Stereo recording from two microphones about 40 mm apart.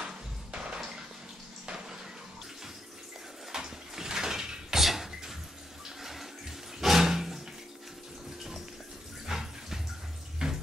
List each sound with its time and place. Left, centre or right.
0.0 s music: right
3.5 s a sound: centre
6.8 s roaring cats: centre
9.3 s dog: centre
10.4 s water tap: centre